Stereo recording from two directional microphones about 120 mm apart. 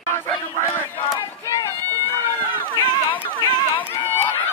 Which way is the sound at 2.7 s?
40° left (ahead or behind).